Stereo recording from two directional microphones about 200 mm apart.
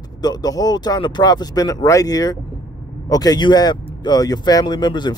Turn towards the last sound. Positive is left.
turn(degrees=20)  # may be behind; listen again after turning